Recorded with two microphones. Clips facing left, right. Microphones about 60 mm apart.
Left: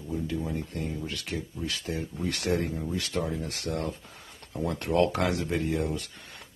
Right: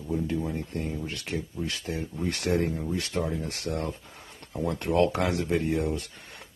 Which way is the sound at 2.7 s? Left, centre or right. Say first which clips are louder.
Right 1 dB; centre.